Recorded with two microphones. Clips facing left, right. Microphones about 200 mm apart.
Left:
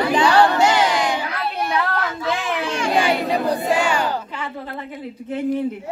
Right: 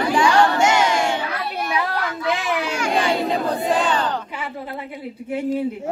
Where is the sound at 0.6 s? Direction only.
30° left (ahead or behind).